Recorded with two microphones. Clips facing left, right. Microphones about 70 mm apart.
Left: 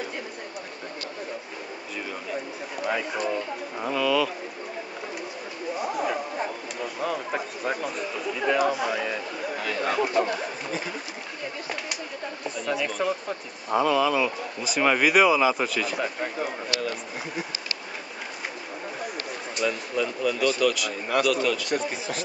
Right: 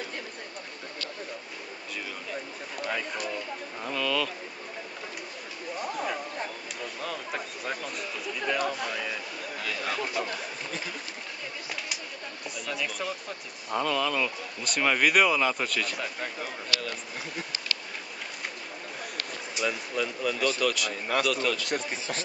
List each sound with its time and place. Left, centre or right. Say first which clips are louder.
2.8 s speech: left 5 dB; centre
3.3 s speech: left 6 dB; centre
3.9 s speech: left 6 dB; centre
5.8 s speech: left 4 dB; centre
12.6 s speech: left 7 dB; centre
16.8 s speech: left 5 dB; centre
19.5 s speech: left 3 dB; centre